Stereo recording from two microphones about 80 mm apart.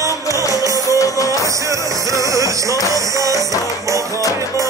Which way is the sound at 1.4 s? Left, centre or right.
Right.